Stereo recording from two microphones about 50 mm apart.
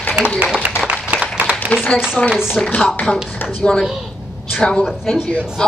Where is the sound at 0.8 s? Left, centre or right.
Right.